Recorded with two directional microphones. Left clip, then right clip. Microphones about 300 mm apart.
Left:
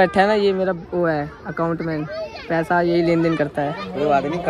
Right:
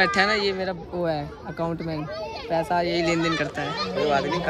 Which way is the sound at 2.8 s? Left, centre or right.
Centre.